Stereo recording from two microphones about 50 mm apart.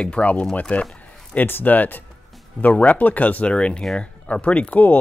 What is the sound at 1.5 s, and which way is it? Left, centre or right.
Speech, left.